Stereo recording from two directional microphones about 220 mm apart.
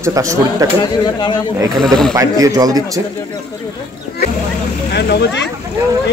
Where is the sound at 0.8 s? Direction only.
20° left (ahead or behind).